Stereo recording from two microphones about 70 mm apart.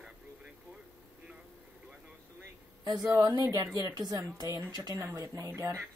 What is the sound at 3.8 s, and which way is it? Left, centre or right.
Speech, right.